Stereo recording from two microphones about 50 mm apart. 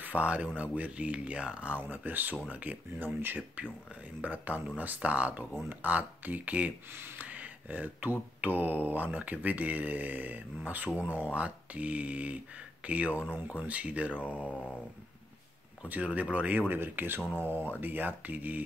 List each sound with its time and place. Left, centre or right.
0.0 s speech: right
3.2 s speech: right
4.2 s speech: right
6.9 s speech: right
7.2 s speech: right
14.1 s mantra: left
15.9 s speech: right